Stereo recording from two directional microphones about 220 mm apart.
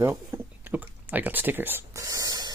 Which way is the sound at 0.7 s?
10° right (ahead or behind).